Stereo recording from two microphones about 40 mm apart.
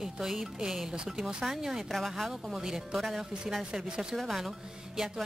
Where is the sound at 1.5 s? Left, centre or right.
Centre.